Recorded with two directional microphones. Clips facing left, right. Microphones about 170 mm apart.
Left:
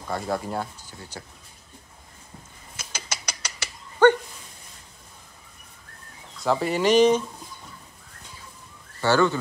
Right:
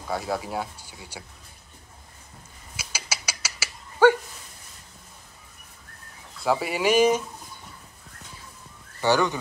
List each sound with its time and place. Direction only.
0.1 s speech: 5° right (ahead or behind)
2.7 s a sound: 10° right (ahead or behind)
6.4 s speech: 10° right (ahead or behind)
9.0 s speech: 15° right (ahead or behind)